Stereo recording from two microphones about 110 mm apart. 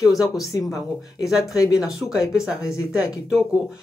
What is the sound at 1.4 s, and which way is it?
Speech, 30° left (ahead or behind).